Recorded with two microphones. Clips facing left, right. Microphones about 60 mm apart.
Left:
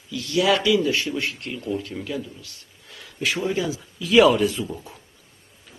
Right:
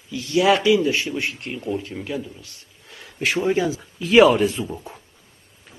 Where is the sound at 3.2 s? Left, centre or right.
Right.